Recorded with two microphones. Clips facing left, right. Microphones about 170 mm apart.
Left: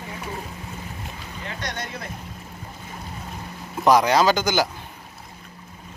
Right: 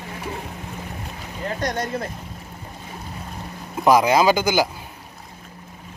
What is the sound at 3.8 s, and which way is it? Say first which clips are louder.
Speech: right 1 dB; 5° right (ahead or behind).